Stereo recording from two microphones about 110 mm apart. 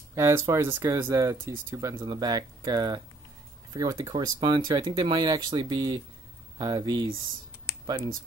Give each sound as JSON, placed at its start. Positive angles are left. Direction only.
{"t": 0.1, "sound": "speech", "side_deg": -25}